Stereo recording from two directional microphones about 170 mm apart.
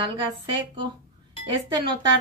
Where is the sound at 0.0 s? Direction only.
30° right (ahead or behind).